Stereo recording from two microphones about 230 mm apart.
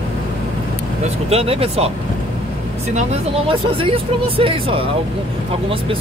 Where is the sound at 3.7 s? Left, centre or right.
Right.